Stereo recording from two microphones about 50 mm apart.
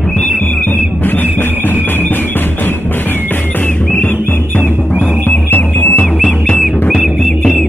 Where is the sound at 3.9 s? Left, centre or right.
Left.